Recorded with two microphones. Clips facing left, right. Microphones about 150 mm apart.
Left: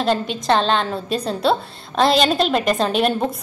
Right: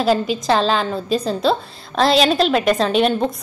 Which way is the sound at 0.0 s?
5° right (ahead or behind).